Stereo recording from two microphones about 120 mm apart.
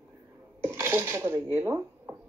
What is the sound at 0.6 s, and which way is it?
Speech, 20° right (ahead or behind).